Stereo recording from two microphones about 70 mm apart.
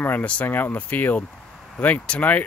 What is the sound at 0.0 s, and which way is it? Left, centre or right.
Speech, left.